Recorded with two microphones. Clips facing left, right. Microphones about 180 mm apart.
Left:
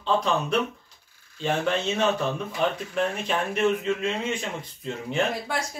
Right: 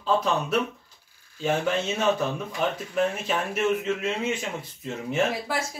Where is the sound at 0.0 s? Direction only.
5° right (ahead or behind).